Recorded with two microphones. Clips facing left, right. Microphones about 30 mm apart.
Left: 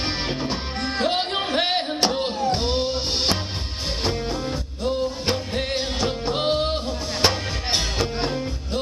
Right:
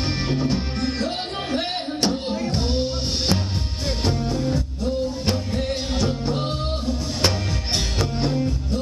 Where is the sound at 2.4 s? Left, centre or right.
Left.